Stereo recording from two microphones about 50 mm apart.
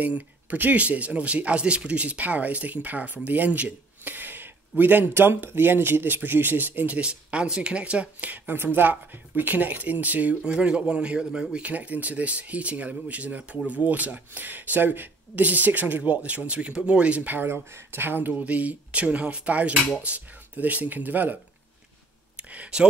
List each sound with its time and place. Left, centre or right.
0.0 s speech: right
7.0 s speech: right
8.7 s speech: right
10.4 s speech: centre
17.3 s speech: right
18.4 s speech: right
22.4 s a sound: right